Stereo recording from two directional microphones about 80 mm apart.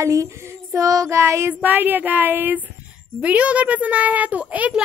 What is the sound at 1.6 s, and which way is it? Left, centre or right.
A woman's voice, right.